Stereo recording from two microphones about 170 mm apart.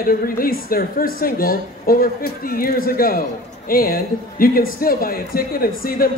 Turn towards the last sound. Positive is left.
turn(degrees=60)  # may be behind; listen again after turning